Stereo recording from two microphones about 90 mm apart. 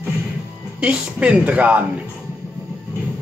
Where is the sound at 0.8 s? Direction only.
15° right (ahead or behind).